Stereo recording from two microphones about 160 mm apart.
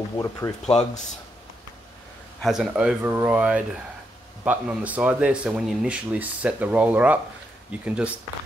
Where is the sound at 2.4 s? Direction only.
5° right (ahead or behind).